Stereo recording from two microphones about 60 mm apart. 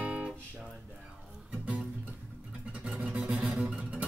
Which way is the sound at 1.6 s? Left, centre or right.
Right.